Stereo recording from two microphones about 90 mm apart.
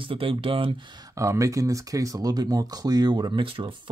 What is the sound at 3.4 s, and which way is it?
Speech, 85° right.